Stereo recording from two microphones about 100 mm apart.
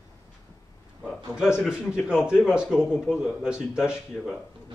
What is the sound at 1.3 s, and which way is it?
A man's voice, 5° right (ahead or behind).